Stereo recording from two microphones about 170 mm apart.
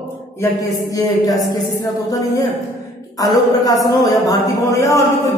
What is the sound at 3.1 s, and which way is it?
Speech, 20° left (ahead or behind).